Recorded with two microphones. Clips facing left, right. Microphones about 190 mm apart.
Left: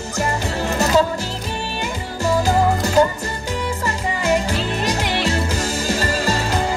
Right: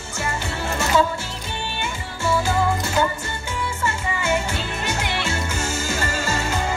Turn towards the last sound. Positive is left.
turn(degrees=35)  # may be behind; listen again after turning